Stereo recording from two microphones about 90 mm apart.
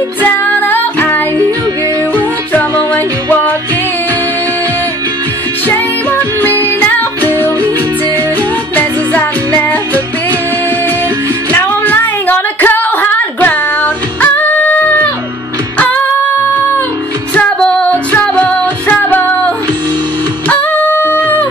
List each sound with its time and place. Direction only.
0.2 s music: 20° left (ahead or behind)
3.3 s music: 20° left (ahead or behind)
8.7 s music: 20° left (ahead or behind)
11.5 s a sound: 20° left (ahead or behind)
14.2 s music: 20° left (ahead or behind)
17.4 s music: 10° left (ahead or behind)